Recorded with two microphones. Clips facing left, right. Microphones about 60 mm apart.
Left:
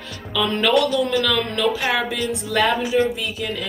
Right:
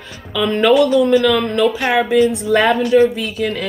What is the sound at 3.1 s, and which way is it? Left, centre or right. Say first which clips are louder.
Speech: right 6 dB; right.